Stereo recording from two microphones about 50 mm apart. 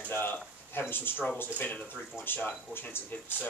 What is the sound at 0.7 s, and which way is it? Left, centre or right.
Speech, left.